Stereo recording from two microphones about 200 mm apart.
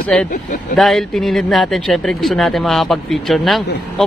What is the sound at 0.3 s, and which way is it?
Speech, 40° left (ahead or behind).